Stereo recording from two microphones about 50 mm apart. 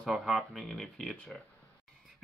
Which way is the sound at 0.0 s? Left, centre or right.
Centre.